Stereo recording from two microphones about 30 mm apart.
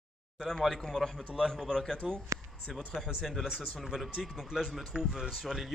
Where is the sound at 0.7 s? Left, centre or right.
Centre; by 3.1 s left.